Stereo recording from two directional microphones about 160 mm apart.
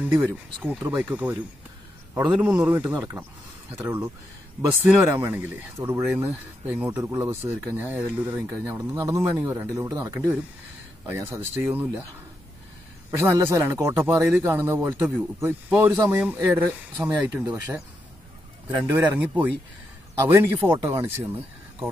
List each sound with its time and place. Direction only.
0.0 s speech: 10° right (ahead or behind)
2.6 s speech: 10° right (ahead or behind)
13.2 s speech: 15° right (ahead or behind)
18.8 s speech: 10° right (ahead or behind)